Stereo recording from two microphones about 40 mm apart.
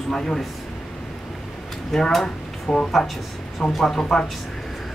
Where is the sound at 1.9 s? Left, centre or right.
Centre.